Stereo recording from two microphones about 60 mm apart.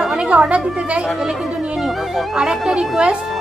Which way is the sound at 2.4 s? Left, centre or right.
Centre.